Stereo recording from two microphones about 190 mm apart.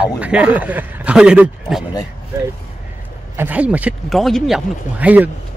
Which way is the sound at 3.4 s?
5° right (ahead or behind).